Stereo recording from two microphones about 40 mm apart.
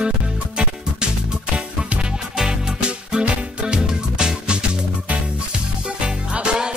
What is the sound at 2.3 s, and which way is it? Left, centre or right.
Music, centre.